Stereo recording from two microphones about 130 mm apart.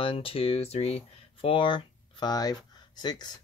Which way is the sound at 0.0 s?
45° left (ahead or behind).